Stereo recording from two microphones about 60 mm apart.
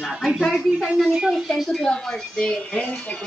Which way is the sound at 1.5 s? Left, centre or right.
Centre.